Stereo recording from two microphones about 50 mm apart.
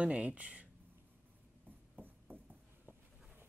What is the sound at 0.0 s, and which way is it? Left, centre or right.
Speech, right.